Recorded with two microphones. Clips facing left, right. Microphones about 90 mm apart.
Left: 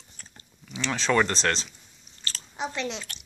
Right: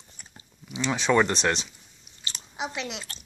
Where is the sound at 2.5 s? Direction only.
5° right (ahead or behind).